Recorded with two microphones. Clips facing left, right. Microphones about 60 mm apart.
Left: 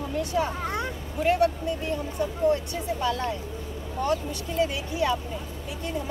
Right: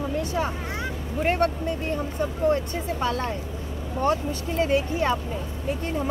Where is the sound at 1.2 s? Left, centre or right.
Right.